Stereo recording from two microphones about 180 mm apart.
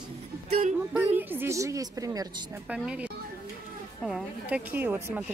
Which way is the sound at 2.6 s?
5° right (ahead or behind).